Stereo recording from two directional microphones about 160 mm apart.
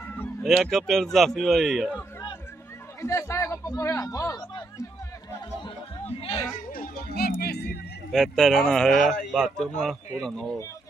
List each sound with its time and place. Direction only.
0.4 s speech: centre (ahead or behind)
3.0 s speech: 15° left (ahead or behind)
6.0 s a child's voice: 40° left (ahead or behind)
6.5 s speech: 60° left (ahead or behind); by 7.8 s 85° left
8.1 s speech: centre (ahead or behind)